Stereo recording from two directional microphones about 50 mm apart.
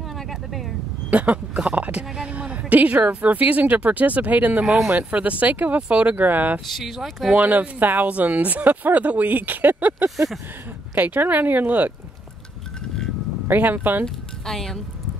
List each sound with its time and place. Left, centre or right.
0.3 s vehicle: centre
1.1 s a woman's voice: right
6.7 s speech: centre
7.3 s speech: right
10.1 s speech: centre
11.0 s speech: right
13.5 s speech: right
14.0 s speech: centre